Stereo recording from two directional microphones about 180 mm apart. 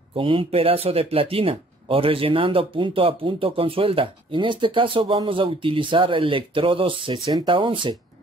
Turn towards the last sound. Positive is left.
turn(degrees=-30)  # may be behind; listen again after turning